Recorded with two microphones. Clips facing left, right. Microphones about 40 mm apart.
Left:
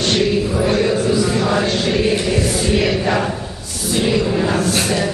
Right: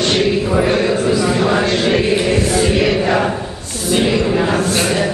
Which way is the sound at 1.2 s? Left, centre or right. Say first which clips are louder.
Right 2 dB; centre.